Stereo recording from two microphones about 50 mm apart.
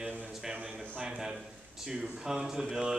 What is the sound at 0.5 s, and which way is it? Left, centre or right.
Speech, right.